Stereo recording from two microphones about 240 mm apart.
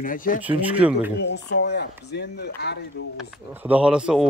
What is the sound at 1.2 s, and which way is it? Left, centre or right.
Speech, left.